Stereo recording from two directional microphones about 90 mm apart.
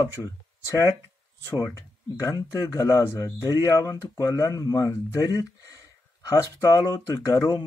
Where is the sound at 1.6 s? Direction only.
35° left (ahead or behind).